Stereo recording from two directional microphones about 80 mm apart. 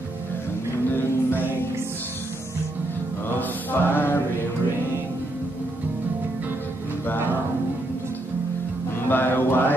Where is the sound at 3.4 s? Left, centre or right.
Left.